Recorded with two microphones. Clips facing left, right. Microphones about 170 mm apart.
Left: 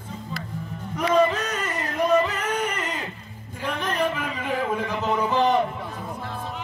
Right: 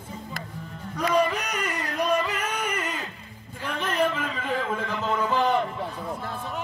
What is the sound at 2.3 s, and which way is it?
Music, 10° right (ahead or behind).